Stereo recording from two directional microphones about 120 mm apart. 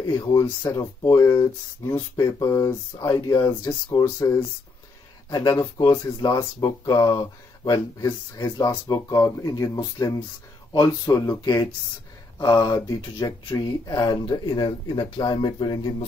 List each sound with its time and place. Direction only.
0.3 s speech: 30° left (ahead or behind)
5.3 s speech: 30° left (ahead or behind)